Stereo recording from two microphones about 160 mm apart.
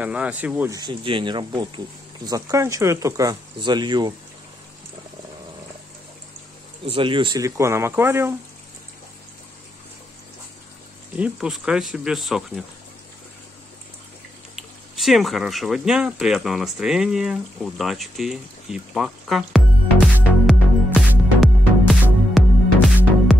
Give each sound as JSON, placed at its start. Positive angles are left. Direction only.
{"t": 0.0, "sound": "speech", "side_deg": -10}
{"t": 0.7, "sound": "speech", "side_deg": -25}
{"t": 6.9, "sound": "speech", "side_deg": -30}
{"t": 11.1, "sound": "speech", "side_deg": -5}
{"t": 14.5, "sound": "speech", "side_deg": 0}
{"t": 20.4, "sound": "music", "side_deg": -5}